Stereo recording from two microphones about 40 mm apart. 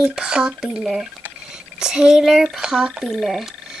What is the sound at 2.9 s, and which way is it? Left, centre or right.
Speech, centre.